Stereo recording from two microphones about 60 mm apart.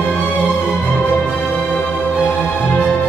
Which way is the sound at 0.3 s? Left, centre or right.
Left.